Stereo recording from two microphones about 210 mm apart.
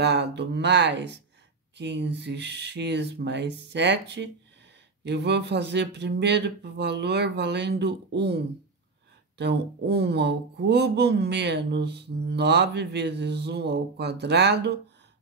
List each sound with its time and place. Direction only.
0.0 s speech: 55° right (ahead or behind)
9.4 s speech: 50° right (ahead or behind)